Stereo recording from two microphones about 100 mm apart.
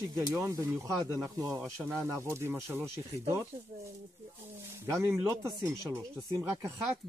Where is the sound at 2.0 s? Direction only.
30° right (ahead or behind).